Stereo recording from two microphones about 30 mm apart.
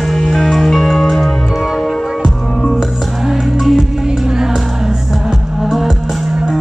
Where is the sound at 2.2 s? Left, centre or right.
Left.